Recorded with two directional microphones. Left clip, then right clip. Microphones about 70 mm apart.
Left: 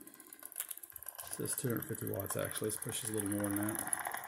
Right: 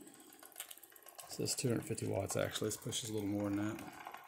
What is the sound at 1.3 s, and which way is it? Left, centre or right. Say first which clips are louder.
Speech: right 2 dB; right.